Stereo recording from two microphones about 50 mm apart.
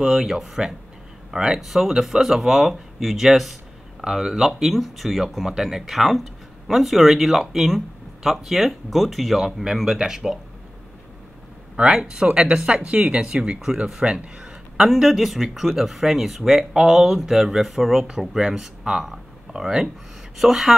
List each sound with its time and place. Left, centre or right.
0.0 s speech: centre
11.7 s speech: centre